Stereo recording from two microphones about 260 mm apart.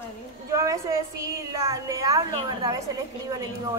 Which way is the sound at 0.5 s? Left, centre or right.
Centre.